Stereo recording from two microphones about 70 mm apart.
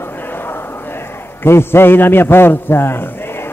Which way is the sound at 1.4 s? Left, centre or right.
Left.